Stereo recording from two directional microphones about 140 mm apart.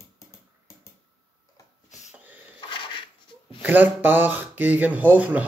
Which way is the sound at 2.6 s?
35° left (ahead or behind).